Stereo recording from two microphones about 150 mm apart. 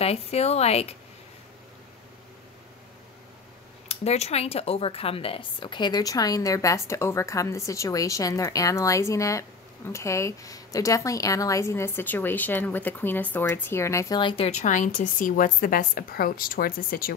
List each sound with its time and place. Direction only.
0.0 s speech: 45° left (ahead or behind)
3.9 s speech: 45° left (ahead or behind); by 14.3 s 25° left (ahead or behind)
14.3 s a woman's voice: 45° left (ahead or behind); by 17.1 s 75° left (ahead or behind)